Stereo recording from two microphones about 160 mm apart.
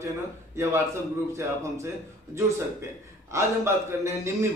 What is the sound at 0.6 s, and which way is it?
A man's voice, 15° right (ahead or behind).